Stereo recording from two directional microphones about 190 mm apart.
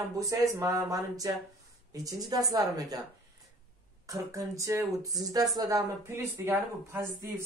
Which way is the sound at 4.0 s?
15° right (ahead or behind).